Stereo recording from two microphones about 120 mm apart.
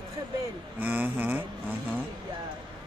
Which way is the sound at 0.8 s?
15° right (ahead or behind).